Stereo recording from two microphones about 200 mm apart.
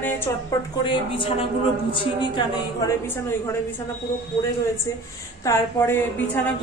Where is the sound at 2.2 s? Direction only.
20° left (ahead or behind).